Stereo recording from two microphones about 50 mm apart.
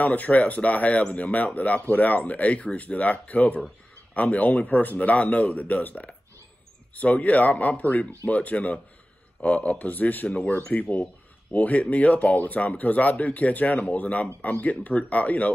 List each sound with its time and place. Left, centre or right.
0.0 s speech: left